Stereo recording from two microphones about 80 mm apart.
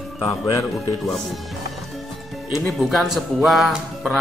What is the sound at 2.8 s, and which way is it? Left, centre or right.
Music, centre.